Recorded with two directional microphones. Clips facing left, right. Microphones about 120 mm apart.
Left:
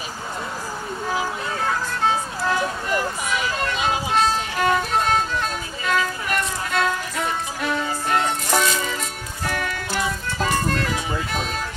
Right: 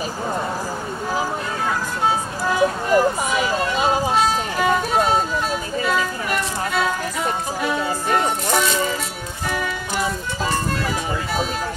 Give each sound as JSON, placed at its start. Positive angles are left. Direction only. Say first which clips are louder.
{"t": 2.0, "sound": "music", "louder": "right 1 dB", "side_deg": -10}
{"t": 2.9, "sound": "vehicle", "louder": "right 6 dB", "side_deg": -40}
{"t": 4.1, "sound": "vehicle", "louder": "right 2 dB", "side_deg": -5}
{"t": 5.9, "sound": "music", "louder": "left 1 dB", "side_deg": -5}
{"t": 10.4, "sound": "music", "louder": "left 1 dB", "side_deg": -5}